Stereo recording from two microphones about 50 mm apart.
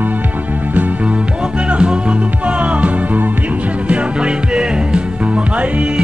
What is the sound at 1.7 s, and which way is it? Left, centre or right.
Music, right.